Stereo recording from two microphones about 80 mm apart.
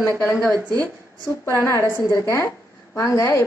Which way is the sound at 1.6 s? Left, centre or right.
Left.